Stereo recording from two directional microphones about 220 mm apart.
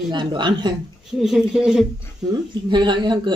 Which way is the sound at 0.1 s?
20° right (ahead or behind).